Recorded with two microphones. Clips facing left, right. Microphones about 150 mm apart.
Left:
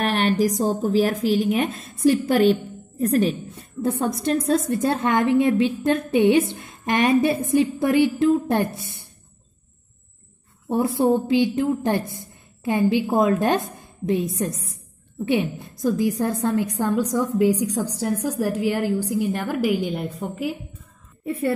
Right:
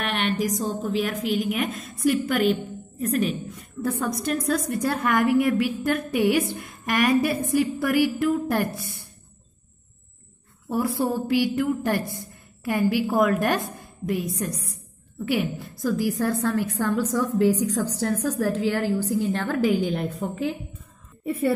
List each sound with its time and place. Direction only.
0.0 s a woman's voice: 35° left (ahead or behind)
10.7 s a woman's voice: 20° left (ahead or behind); by 20.5 s 5° left (ahead or behind)